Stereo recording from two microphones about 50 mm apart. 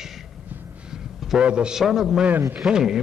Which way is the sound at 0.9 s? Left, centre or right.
Centre.